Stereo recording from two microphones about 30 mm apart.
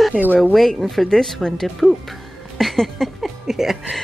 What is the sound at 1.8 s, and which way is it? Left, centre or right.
Speech, centre.